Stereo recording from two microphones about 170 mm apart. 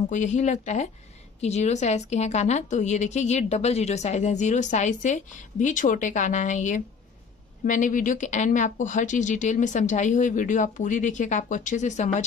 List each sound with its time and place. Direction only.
0.1 s a woman's voice: 45° left (ahead or behind)